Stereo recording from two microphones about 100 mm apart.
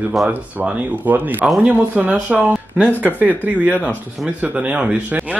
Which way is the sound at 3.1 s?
15° right (ahead or behind).